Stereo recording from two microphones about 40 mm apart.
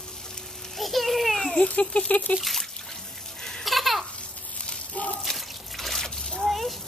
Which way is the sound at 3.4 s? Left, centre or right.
Centre.